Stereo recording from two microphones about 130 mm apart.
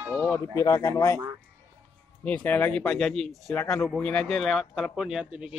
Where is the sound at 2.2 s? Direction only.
10° left (ahead or behind); by 5.5 s 10° right (ahead or behind).